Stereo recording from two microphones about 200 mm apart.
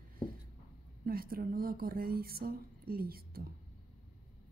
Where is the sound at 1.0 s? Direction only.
50° right (ahead or behind).